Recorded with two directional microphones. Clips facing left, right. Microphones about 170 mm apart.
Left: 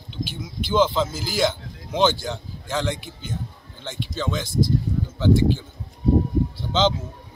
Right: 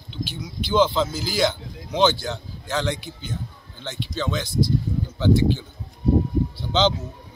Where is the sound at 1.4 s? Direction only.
5° left (ahead or behind).